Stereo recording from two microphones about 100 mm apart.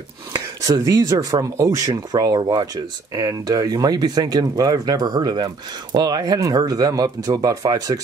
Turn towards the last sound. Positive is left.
turn(degrees=-40)  # may be behind; listen again after turning